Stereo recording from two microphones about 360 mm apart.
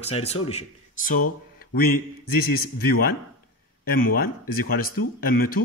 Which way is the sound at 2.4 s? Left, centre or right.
Left.